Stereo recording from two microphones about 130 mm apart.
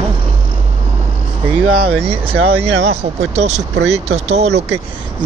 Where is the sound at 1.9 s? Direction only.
45° right (ahead or behind).